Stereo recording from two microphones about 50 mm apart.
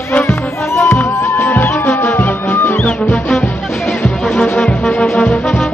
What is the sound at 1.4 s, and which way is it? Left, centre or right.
Music, left.